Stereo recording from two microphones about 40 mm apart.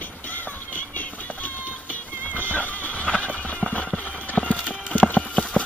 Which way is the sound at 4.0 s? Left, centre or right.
Left.